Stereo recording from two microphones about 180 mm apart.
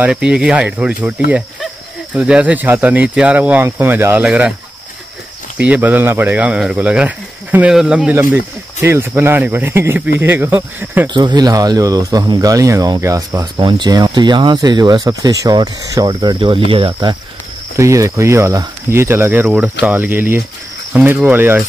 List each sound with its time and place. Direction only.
0.0 s speech: 5° right (ahead or behind)
5.6 s speech: 10° right (ahead or behind)
11.1 s speech: 25° right (ahead or behind)